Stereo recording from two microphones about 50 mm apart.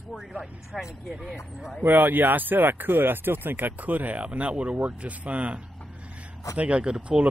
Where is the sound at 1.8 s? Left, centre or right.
Right.